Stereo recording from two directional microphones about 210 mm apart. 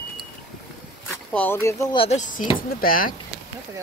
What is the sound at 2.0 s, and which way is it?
Speech, 35° left (ahead or behind).